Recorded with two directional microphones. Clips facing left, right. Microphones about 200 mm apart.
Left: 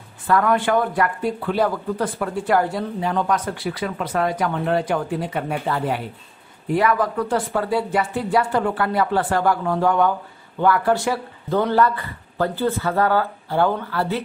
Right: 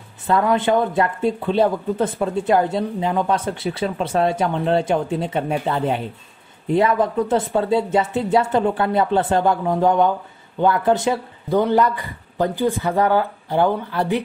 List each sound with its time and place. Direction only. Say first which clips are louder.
0.3 s speech: right 1 dB; 20° right (ahead or behind)